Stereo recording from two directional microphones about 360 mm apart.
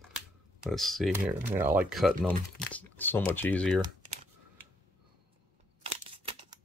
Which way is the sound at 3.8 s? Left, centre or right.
Centre.